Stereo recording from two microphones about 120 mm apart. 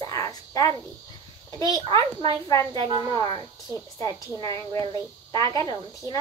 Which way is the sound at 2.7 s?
40° right (ahead or behind).